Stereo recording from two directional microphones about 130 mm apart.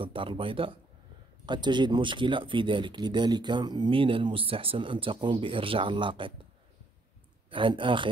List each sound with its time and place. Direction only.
0.0 s speech: 40° right (ahead or behind)
7.4 s speech: 40° right (ahead or behind)